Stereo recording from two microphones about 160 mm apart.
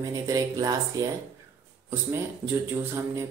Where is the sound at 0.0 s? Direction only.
20° right (ahead or behind).